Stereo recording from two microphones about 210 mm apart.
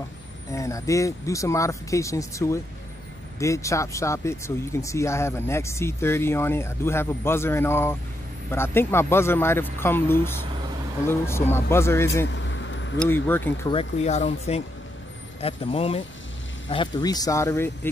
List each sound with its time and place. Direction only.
0.5 s speech: 15° left (ahead or behind)
12.3 s vehicle: 60° left (ahead or behind)
13.0 s speech: 10° left (ahead or behind)
13.7 s speech: 30° left (ahead or behind)